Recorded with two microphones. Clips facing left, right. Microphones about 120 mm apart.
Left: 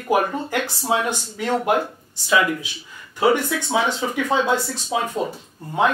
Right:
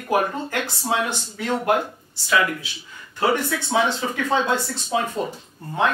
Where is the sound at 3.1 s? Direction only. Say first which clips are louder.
Left 3 dB; 10° left (ahead or behind).